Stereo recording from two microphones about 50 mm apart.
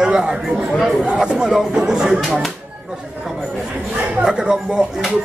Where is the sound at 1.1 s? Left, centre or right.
Centre.